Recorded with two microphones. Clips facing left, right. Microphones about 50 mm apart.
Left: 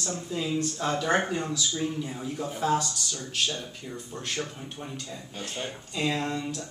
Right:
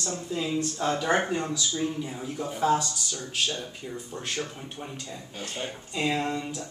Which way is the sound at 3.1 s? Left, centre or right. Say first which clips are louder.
Right 1 dB; centre.